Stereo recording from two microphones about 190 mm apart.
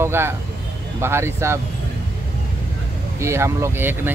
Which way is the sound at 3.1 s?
15° right (ahead or behind).